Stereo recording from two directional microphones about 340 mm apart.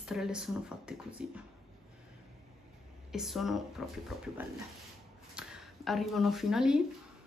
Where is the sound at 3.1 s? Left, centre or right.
Centre.